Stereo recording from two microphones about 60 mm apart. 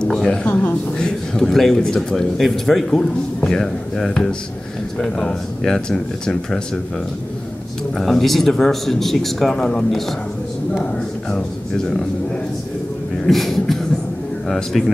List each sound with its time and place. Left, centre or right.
0.0 s speech: centre
0.5 s speech: left
0.9 s speech: centre
8.0 s speech: centre
13.3 s speech: centre